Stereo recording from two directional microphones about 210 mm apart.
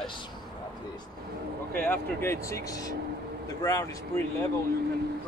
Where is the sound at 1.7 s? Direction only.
10° left (ahead or behind).